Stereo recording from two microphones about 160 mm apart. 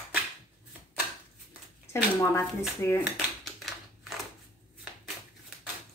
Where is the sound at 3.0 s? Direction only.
Centre (ahead or behind).